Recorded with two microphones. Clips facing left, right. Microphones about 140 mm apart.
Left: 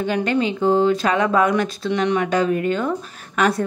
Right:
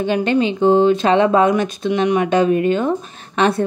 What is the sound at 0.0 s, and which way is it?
A woman's voice, 20° right (ahead or behind).